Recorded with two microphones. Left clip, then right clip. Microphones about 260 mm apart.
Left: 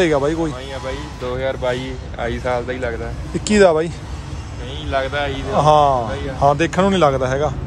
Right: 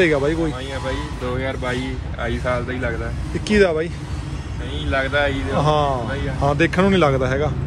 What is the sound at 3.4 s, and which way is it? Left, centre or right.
Speech, centre.